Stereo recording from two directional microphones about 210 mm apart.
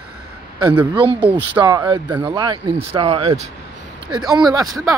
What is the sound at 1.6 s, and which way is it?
Speech, 20° right (ahead or behind).